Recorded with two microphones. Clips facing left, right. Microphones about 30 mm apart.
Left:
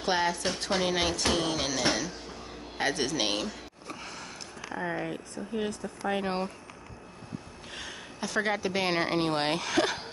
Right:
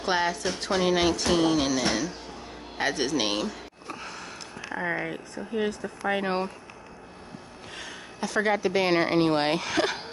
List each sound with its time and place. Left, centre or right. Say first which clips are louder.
0.0 s music: right 2 dB; centre
2.8 s a sound: right 2 dB; centre
4.6 s speech: right 3 dB; right
7.7 s speech: right 1 dB; centre